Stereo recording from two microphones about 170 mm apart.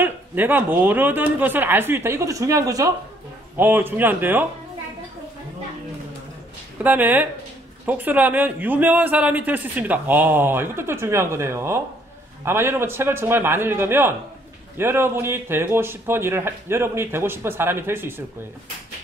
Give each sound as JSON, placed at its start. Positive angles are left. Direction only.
{"t": 0.0, "sound": "a man's voice", "side_deg": -10}
{"t": 6.8, "sound": "a man's voice", "side_deg": -10}